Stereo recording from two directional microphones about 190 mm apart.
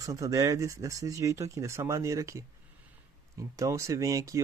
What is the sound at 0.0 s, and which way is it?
Speech, 20° right (ahead or behind).